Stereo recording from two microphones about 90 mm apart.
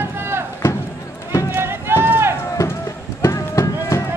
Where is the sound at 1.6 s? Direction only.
25° right (ahead or behind).